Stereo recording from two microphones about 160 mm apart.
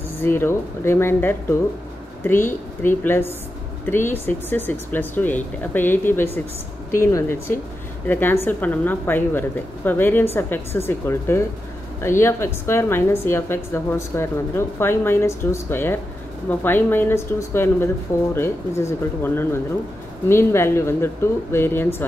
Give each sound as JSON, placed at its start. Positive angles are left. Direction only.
{"t": 0.2, "sound": "a woman's voice", "side_deg": 15}